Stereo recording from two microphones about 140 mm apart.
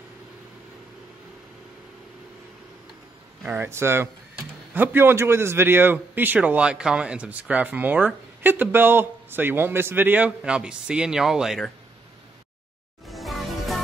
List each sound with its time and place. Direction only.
3.4 s a man's voice: 15° right (ahead or behind)
13.0 s music: centre (ahead or behind)